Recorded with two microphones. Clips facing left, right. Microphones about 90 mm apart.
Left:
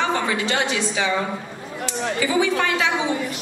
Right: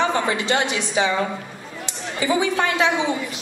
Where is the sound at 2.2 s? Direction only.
25° right (ahead or behind).